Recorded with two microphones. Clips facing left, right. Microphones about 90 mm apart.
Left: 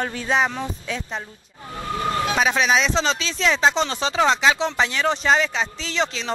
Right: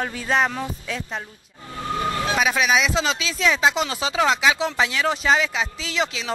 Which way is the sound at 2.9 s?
5° right (ahead or behind).